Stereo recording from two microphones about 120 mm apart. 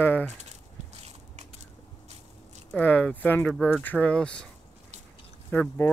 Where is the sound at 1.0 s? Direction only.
65° right (ahead or behind).